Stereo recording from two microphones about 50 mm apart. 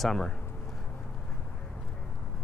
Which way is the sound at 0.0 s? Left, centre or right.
Centre.